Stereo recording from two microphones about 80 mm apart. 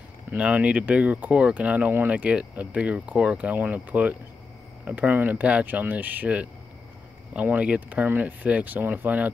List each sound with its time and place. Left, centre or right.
0.4 s speech: centre